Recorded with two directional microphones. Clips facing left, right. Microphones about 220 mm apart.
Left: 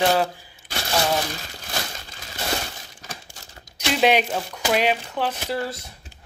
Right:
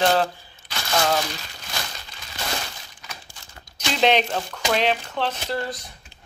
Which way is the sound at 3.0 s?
45° left (ahead or behind).